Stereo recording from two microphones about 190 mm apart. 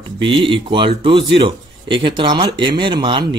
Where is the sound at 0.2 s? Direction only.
25° right (ahead or behind).